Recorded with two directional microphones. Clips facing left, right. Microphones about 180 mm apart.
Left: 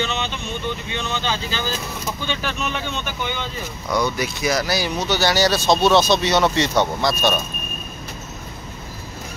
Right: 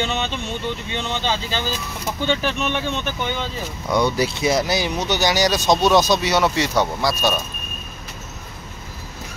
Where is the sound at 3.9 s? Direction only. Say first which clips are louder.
Right 3 dB; 30° right (ahead or behind); by 7.3 s 10° right (ahead or behind).